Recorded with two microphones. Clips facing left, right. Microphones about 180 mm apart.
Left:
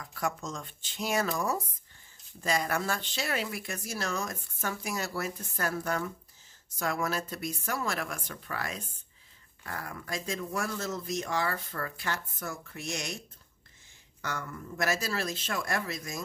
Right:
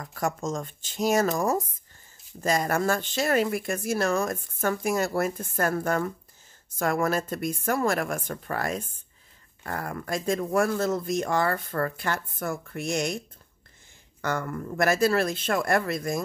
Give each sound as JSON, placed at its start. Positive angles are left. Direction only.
{"t": 0.0, "sound": "speech", "side_deg": -45}
{"t": 14.2, "sound": "speech", "side_deg": -55}